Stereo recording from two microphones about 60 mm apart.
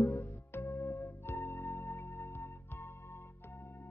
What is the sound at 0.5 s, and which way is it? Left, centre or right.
Music, left.